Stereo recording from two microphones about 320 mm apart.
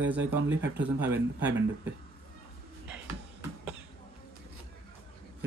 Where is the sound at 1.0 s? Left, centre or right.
Centre.